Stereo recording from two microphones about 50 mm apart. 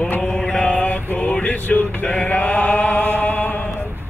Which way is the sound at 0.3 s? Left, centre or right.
Centre.